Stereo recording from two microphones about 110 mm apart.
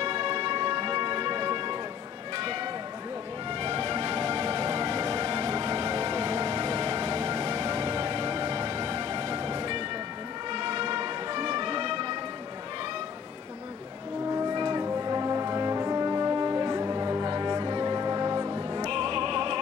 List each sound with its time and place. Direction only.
0.0 s music: 45° right (ahead or behind)
0.9 s music: 40° right (ahead or behind)
2.3 s a sound: 45° right (ahead or behind)
3.7 s music: 40° right (ahead or behind)
14.3 s music: 40° right (ahead or behind)
14.9 s brass instrument: 35° right (ahead or behind)